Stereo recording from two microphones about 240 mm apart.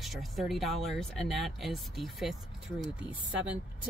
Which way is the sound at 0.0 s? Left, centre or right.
Centre.